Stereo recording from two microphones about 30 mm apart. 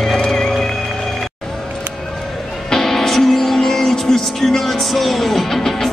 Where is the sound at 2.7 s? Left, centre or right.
Centre.